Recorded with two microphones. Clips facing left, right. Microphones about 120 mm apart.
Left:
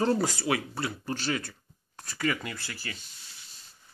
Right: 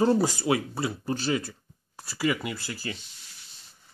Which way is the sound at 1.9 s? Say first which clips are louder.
Right 3 dB; 10° right (ahead or behind).